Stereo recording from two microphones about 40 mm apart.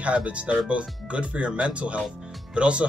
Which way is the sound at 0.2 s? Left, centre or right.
Right.